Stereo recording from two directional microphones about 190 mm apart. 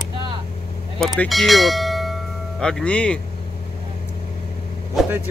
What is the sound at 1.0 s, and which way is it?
Speech, centre (ahead or behind).